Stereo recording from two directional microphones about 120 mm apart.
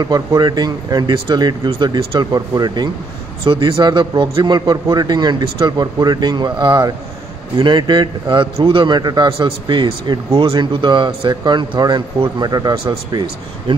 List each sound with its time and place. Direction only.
0.0 s a man's voice: 35° right (ahead or behind)